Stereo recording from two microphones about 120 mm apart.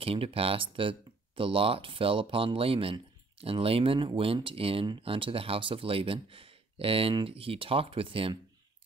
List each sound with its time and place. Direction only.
0.0 s speech: 50° right (ahead or behind)